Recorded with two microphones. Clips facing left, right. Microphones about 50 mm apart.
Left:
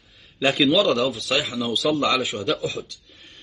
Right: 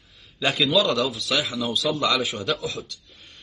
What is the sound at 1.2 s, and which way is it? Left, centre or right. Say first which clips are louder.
Speech: left 1 dB; left.